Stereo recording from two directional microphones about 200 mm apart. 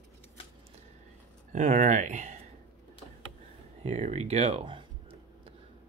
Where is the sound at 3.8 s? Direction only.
35° right (ahead or behind).